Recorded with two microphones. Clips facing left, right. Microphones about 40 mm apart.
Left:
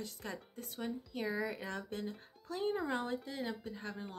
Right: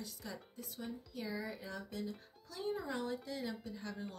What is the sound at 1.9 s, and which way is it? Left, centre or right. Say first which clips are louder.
Speech: left 2 dB; left.